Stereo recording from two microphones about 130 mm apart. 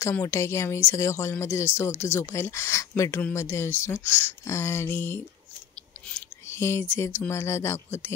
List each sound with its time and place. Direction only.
0.0 s speech: 20° left (ahead or behind)
6.4 s speech: 20° left (ahead or behind)